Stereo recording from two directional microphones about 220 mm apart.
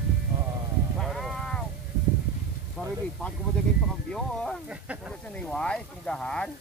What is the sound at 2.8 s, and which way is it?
Speech, 5° left (ahead or behind).